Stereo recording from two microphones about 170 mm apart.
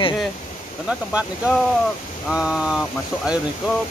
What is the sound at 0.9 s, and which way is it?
Speech, 5° right (ahead or behind).